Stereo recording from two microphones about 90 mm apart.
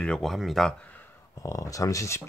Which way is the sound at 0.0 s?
5° left (ahead or behind).